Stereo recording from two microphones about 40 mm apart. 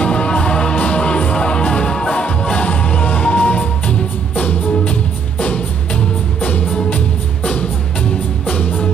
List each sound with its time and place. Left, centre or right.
0.0 s music: left